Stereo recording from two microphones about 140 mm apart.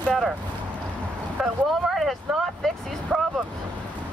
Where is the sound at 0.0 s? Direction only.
Centre (ahead or behind).